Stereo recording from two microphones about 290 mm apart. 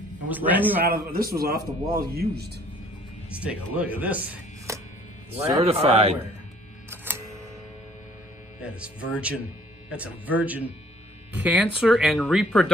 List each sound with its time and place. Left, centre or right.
0.3 s a man's voice: centre
0.8 s a man's voice: right
3.3 s speech: centre
5.3 s speech: right
8.5 s speech: centre